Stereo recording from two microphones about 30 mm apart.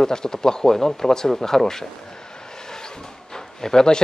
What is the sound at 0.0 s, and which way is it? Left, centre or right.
Speech, left.